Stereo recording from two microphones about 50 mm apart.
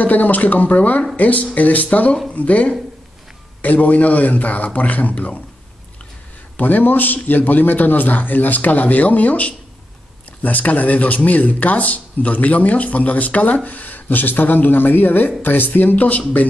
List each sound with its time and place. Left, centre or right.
0.0 s speech: left
6.5 s speech: left